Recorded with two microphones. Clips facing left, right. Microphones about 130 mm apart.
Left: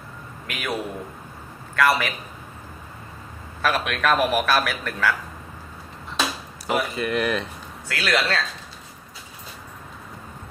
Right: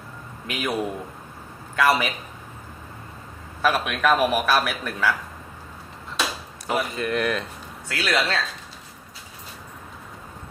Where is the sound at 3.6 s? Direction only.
10° right (ahead or behind).